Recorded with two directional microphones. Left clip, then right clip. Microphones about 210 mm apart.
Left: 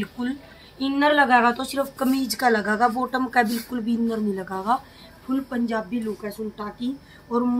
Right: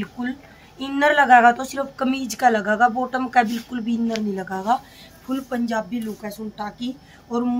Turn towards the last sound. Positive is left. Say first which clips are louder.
# left 1 dB
turn(degrees=-10)  # may be behind; listen again after turning